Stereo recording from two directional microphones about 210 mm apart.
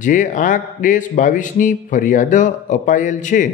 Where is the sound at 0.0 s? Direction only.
40° left (ahead or behind).